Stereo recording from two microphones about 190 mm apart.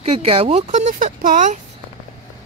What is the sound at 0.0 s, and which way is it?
Speech, 30° right (ahead or behind).